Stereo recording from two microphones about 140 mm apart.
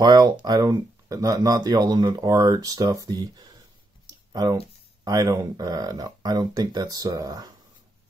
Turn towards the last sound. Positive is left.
turn(degrees=-30)  # may be behind; listen again after turning